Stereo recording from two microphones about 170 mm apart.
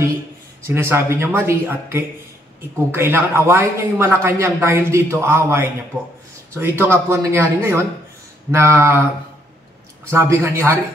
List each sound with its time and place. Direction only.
0.7 s a man's voice: 15° right (ahead or behind)
10.1 s a man's voice: 15° right (ahead or behind)